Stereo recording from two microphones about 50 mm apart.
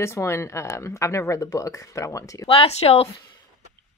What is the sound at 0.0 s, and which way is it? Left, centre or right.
Speech, left.